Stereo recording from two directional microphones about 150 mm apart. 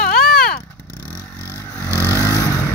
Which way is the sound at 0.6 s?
10° left (ahead or behind).